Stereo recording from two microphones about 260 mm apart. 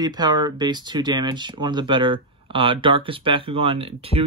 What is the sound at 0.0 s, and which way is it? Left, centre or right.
Speech, centre.